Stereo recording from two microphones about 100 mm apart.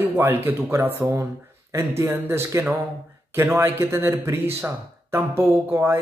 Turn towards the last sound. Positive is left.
turn(degrees=-20)  # may be behind; listen again after turning